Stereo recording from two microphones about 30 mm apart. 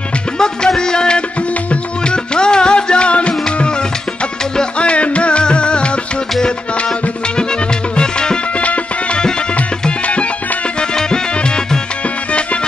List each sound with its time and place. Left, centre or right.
0.4 s music: left
4.7 s music: left
7.9 s music: left
8.5 s music: left
11.4 s music: left